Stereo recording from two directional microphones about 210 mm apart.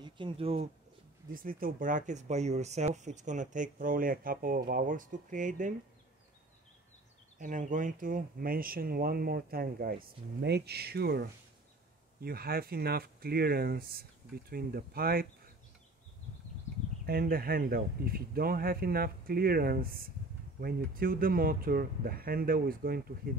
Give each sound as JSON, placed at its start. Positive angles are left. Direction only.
{"t": 0.0, "sound": "speech", "side_deg": -25}
{"t": 1.3, "sound": "speech", "side_deg": -40}
{"t": 7.3, "sound": "speech", "side_deg": -35}
{"t": 17.0, "sound": "speech", "side_deg": -45}